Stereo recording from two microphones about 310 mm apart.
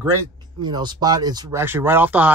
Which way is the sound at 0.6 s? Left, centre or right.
Centre.